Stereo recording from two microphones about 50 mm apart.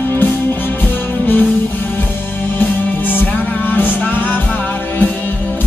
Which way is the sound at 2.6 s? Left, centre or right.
Left.